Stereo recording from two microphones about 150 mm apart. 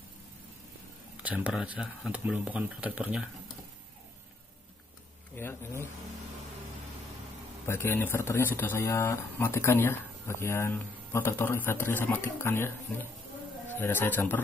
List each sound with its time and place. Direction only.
1.1 s speech: 10° right (ahead or behind)
5.4 s speech: 15° left (ahead or behind)
7.6 s a man's voice: 15° left (ahead or behind)